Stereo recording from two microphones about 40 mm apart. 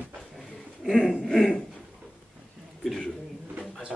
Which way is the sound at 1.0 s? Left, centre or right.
Centre.